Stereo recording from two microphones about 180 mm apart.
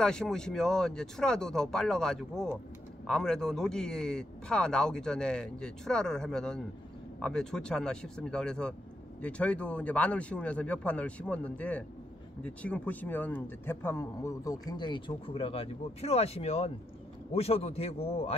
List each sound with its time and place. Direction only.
0.0 s speech: 5° left (ahead or behind); by 18.3 s 35° left (ahead or behind)